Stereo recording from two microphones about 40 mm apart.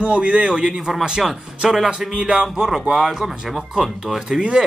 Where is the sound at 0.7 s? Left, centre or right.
Centre.